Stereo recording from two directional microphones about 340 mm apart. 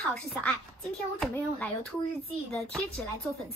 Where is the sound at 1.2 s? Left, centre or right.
Centre.